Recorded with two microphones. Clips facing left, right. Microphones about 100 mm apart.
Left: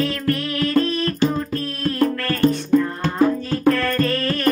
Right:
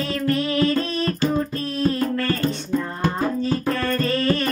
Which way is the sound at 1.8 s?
20° right (ahead or behind).